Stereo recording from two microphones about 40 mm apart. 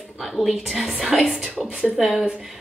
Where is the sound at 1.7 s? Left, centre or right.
Right.